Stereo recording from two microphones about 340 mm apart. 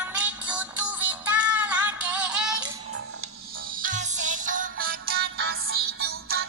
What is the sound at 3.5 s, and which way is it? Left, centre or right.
Music, right.